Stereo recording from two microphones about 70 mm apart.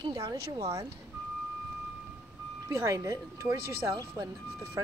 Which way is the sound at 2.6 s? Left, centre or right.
Right.